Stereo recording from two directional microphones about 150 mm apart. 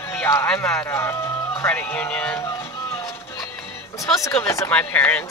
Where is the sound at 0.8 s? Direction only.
15° left (ahead or behind).